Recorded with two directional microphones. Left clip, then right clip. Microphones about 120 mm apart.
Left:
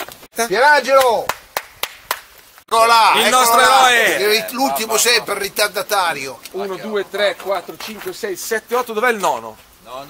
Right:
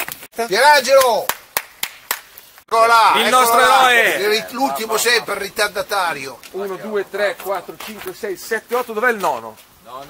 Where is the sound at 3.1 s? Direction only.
20° right (ahead or behind).